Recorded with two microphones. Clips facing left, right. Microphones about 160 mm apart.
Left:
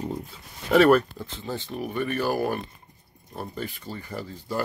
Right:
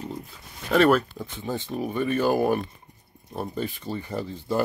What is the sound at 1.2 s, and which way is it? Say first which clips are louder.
Speech: right 2 dB; 15° right (ahead or behind).